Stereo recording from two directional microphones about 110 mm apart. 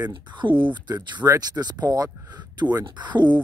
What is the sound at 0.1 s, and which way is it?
Speech, 45° right (ahead or behind).